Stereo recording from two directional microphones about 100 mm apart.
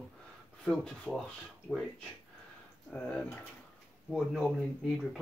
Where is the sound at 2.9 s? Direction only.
10° left (ahead or behind).